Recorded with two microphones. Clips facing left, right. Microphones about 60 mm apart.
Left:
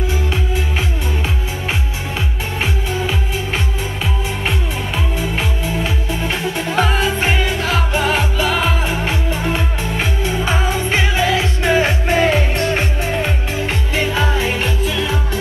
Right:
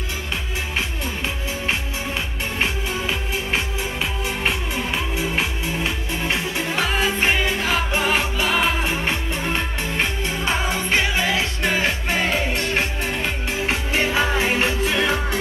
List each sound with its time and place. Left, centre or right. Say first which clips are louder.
2.6 s music: left 3 dB; centre
6.2 s music: left 2 dB; centre
13.6 s music: left 1 dB; centre
14.9 s music: even; right